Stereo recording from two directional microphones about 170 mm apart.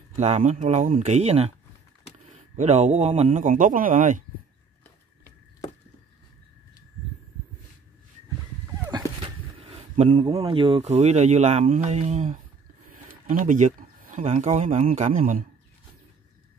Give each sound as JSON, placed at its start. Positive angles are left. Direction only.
{"t": 0.1, "sound": "a man's voice", "side_deg": -45}
{"t": 9.6, "sound": "speech", "side_deg": -35}
{"t": 13.3, "sound": "a sound", "side_deg": -50}
{"t": 14.2, "sound": "a man's voice", "side_deg": -40}